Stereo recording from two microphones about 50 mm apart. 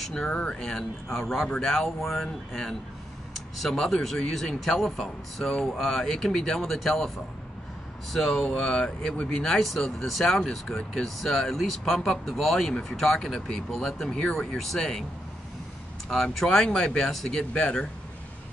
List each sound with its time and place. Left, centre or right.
0.0 s speech: centre
0.3 s speech: left
8.1 s speech: centre
8.8 s speech: left
9.3 s speech: centre
16.1 s speech: centre
17.5 s speech: left